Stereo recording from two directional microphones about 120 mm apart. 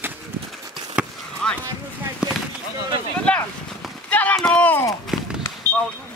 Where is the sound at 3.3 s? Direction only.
10° left (ahead or behind).